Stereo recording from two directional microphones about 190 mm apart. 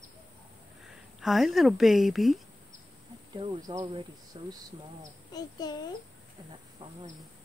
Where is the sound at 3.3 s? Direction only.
25° right (ahead or behind).